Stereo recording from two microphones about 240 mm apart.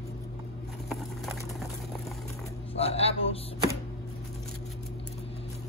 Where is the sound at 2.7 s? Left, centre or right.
Left.